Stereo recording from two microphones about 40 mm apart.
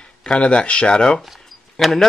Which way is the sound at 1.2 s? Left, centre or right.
Centre.